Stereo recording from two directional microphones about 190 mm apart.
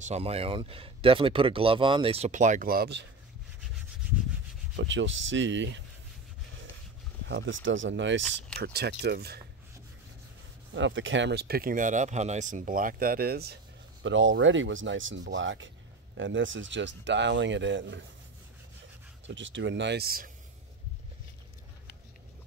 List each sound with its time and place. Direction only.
0.0 s speech: 35° right (ahead or behind); by 3.1 s 60° right (ahead or behind)
4.7 s speech: 80° right
7.2 s speech: 75° right (ahead or behind)
8.5 s speech: 60° right (ahead or behind)
10.7 s speech: 75° right (ahead or behind); by 13.6 s 55° right (ahead or behind)
14.0 s speech: 80° right
19.2 s speech: 80° right; by 20.2 s 55° right (ahead or behind)